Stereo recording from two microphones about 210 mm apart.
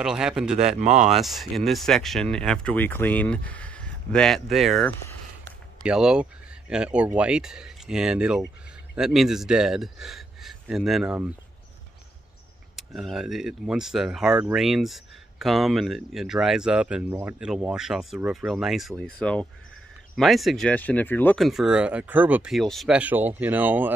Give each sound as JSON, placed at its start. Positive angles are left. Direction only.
{"t": 0.0, "sound": "speech", "side_deg": -5}
{"t": 0.6, "sound": "speech", "side_deg": -30}
{"t": 1.1, "sound": "speech", "side_deg": 0}
{"t": 5.8, "sound": "speech", "side_deg": -5}
{"t": 12.7, "sound": "speech", "side_deg": 0}